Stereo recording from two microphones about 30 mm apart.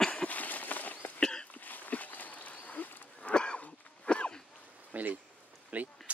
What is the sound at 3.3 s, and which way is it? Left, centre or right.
Wheeze, left.